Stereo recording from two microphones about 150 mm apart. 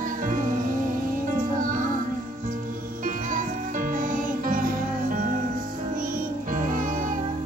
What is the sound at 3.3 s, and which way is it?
Music, 65° right (ahead or behind).